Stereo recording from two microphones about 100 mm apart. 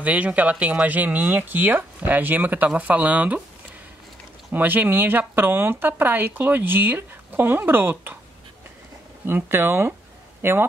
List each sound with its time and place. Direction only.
0.0 s speech: 15° right (ahead or behind)
4.5 s speech: 20° right (ahead or behind)
9.2 s speech: 20° right (ahead or behind)